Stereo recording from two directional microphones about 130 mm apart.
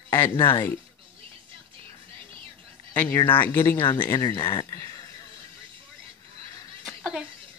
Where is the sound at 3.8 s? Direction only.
40° left (ahead or behind).